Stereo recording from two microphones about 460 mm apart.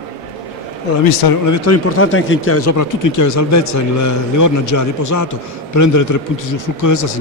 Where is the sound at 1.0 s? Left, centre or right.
Left.